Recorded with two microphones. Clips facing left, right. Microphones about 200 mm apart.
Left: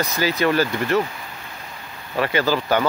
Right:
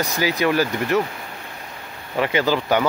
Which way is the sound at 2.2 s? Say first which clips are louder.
Right 1 dB; 15° right (ahead or behind).